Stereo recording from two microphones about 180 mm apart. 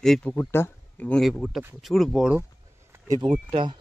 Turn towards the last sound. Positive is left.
turn(degrees=-25)  # may be behind; listen again after turning